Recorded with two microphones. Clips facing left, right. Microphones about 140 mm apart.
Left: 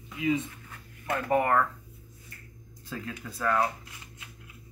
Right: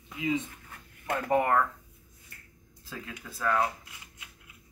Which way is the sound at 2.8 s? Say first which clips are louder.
Left 4 dB; centre (ahead or behind).